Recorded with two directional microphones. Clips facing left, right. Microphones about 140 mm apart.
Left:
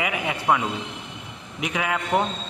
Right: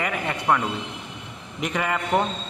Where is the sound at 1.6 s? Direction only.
Centre (ahead or behind).